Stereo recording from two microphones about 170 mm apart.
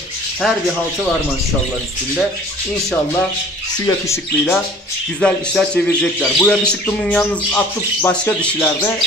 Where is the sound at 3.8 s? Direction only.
15° left (ahead or behind).